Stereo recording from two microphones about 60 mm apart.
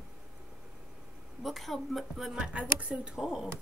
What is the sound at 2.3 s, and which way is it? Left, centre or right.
Speech, centre.